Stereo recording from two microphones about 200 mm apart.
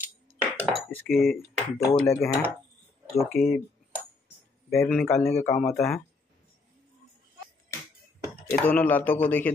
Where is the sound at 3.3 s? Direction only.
Centre (ahead or behind).